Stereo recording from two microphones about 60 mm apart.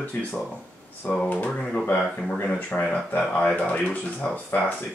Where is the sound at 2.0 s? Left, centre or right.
Centre.